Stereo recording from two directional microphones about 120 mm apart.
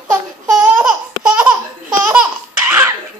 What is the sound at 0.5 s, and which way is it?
Laughter, 5° right (ahead or behind).